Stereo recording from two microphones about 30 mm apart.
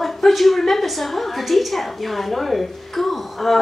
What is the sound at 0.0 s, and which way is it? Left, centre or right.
A woman's voice, centre.